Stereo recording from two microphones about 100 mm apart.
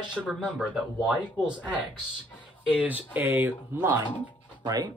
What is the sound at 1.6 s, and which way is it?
Speech, 15° right (ahead or behind).